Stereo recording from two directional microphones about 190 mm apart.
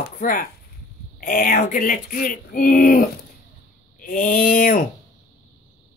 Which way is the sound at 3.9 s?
45° left (ahead or behind).